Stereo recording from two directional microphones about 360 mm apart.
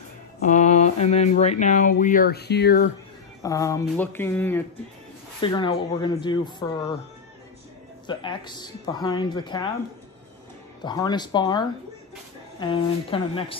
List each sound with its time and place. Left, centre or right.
0.4 s speech: centre
3.4 s a woman's voice: centre
8.1 s a woman's voice: centre
10.8 s a woman's voice: centre